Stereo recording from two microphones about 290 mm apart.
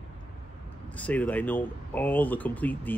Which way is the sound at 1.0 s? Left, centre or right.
Centre.